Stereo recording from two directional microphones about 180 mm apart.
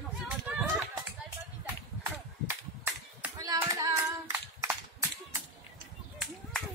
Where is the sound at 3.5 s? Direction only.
20° right (ahead or behind).